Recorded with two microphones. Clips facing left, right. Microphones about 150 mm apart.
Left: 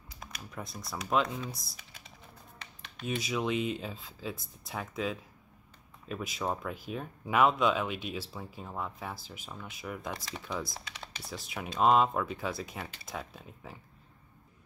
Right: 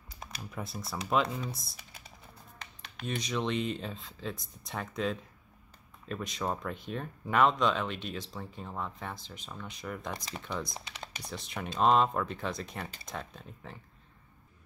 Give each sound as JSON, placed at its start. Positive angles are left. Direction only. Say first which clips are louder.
{"t": 0.5, "sound": "speech", "louder": "right 2 dB", "side_deg": -5}
{"t": 2.6, "sound": "a sound", "louder": "even", "side_deg": -45}
{"t": 3.1, "sound": "speech", "louder": "left 1 dB", "side_deg": 5}